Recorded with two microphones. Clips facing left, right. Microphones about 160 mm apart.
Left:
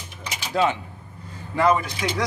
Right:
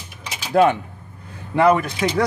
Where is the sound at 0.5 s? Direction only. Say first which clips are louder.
Right 7 dB; 55° right (ahead or behind).